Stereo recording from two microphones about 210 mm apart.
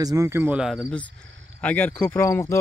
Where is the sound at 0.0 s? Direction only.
15° right (ahead or behind).